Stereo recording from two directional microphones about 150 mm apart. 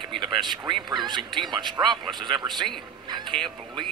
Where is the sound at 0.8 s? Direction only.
30° right (ahead or behind).